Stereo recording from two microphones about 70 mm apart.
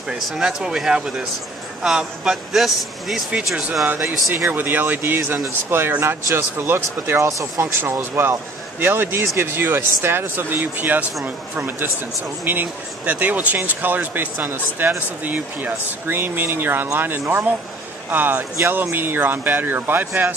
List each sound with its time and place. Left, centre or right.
0.1 s speech: centre
4.5 s speech: right
7.2 s speech: right
7.8 s speech: right